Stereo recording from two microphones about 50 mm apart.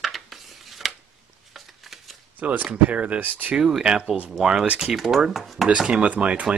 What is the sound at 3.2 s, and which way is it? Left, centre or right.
Speech, right.